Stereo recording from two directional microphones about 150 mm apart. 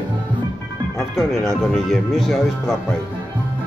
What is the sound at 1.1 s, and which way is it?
Speech, centre (ahead or behind).